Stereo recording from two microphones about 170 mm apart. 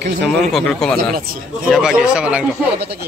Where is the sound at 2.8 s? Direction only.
75° right (ahead or behind).